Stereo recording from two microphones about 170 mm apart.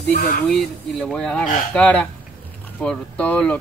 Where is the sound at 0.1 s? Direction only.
55° left (ahead or behind).